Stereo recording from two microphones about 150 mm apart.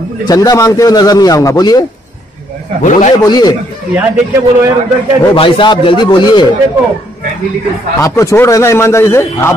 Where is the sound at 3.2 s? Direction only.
25° left (ahead or behind).